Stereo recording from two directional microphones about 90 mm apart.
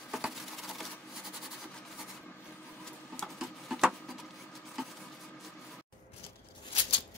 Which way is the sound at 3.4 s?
5° right (ahead or behind).